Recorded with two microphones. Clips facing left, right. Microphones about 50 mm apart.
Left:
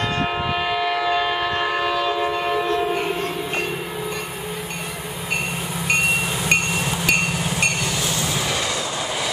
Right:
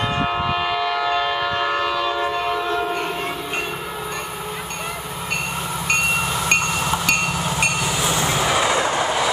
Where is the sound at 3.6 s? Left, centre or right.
Centre.